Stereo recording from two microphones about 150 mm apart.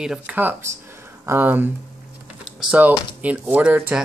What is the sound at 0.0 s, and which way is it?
Speech, 5° right (ahead or behind).